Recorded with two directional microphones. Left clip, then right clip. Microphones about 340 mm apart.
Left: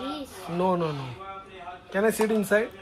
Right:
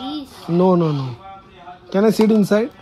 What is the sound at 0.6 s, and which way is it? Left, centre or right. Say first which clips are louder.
Speech: right 9 dB; right.